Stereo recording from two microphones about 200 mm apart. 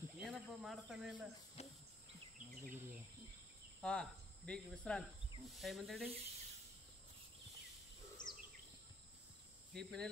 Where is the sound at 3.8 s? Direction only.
5° left (ahead or behind).